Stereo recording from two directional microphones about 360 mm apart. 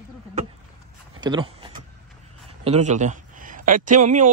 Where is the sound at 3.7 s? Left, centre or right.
Right.